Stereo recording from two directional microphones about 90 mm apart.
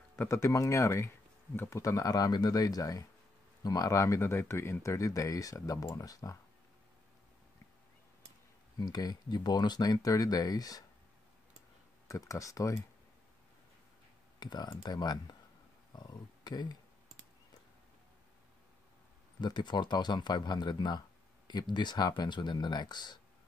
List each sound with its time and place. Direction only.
0.3 s speech: 35° left (ahead or behind)
8.7 s speech: 50° left (ahead or behind)
12.1 s speech: 35° left (ahead or behind)
14.4 s speech: 50° left (ahead or behind)
19.4 s speech: 55° left (ahead or behind)